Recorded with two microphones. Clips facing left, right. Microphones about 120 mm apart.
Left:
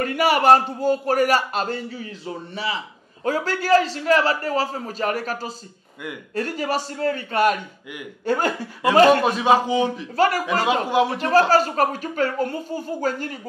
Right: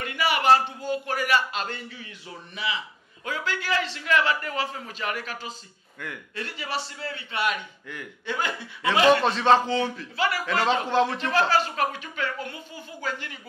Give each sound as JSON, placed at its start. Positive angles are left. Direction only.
{"t": 0.0, "sound": "a man's voice", "side_deg": 40}
{"t": 9.2, "sound": "speech", "side_deg": 10}
{"t": 10.1, "sound": "a man's voice", "side_deg": 45}
{"t": 10.4, "sound": "speech", "side_deg": 10}
{"t": 11.1, "sound": "a man's voice", "side_deg": 40}